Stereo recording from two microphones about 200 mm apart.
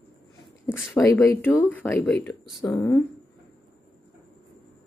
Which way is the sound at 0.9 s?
15° left (ahead or behind).